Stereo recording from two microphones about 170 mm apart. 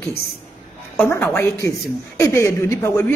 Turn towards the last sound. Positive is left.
turn(degrees=15)  # may be behind; listen again after turning